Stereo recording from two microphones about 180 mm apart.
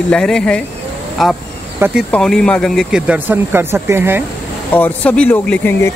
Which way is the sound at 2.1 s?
5° left (ahead or behind).